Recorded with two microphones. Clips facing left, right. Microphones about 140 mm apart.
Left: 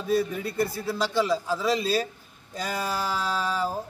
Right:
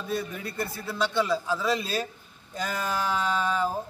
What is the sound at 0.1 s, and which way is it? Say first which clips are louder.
A man's voice: left 7 dB; 10° left (ahead or behind).